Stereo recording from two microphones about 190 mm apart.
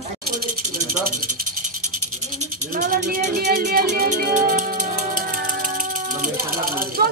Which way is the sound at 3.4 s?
55° right (ahead or behind).